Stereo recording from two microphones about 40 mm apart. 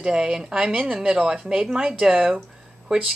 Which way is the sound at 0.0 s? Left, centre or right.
Centre.